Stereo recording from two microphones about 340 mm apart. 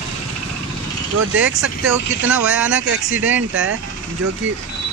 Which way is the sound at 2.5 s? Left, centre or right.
Centre.